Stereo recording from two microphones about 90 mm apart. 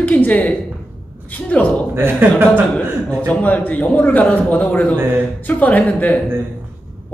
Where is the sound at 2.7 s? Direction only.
15° left (ahead or behind).